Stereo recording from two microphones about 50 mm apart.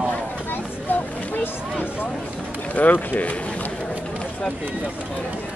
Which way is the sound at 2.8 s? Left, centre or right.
Left.